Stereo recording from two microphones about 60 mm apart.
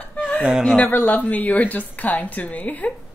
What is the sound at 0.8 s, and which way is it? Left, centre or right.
A woman's voice, left.